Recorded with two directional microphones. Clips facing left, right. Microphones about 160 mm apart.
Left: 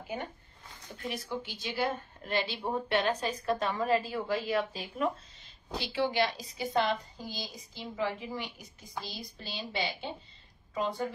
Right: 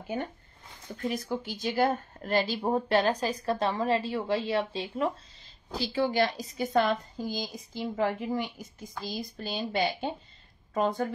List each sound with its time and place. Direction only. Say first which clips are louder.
1.0 s speech: right 5 dB; 40° right (ahead or behind)
5.8 s a woman's voice: right 3 dB; 45° right (ahead or behind)